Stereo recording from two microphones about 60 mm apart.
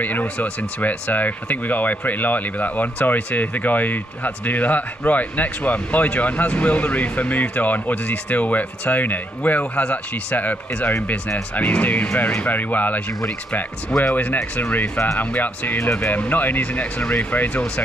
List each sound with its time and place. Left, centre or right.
0.0 s speech: left
14.1 s speech: left